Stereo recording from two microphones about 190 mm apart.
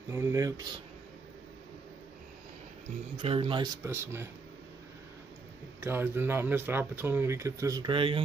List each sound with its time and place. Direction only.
0.1 s speech: 15° right (ahead or behind)
3.2 s speech: 30° right (ahead or behind)
3.8 s speech: 15° right (ahead or behind)
5.8 s speech: 10° right (ahead or behind); by 8.2 s 25° right (ahead or behind)